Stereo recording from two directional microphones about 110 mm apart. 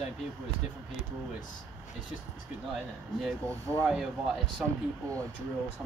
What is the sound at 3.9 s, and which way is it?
Speech, 5° right (ahead or behind).